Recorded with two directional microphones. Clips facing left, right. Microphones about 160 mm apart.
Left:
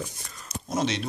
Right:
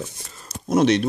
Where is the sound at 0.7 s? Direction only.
60° right (ahead or behind).